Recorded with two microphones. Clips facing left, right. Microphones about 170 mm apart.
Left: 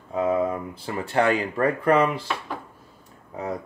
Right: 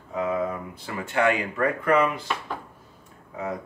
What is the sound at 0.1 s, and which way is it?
Speech, 30° left (ahead or behind).